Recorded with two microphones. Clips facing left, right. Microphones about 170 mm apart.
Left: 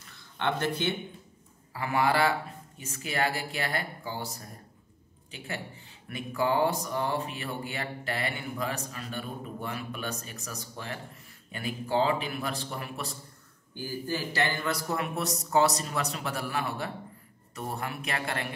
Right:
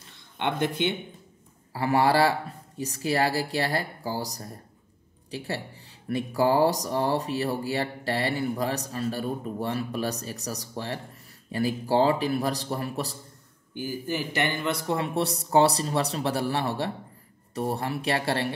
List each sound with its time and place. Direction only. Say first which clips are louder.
0.4 s speech: right 3 dB; 15° right (ahead or behind)
1.7 s speech: right 5 dB; 35° right (ahead or behind)
13.7 s speech: right 3 dB; 15° right (ahead or behind); by 18.5 s 30° right (ahead or behind)